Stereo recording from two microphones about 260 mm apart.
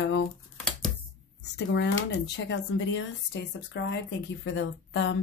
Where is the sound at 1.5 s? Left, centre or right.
Left.